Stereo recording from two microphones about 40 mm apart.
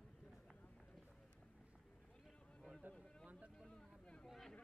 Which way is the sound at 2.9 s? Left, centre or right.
Right.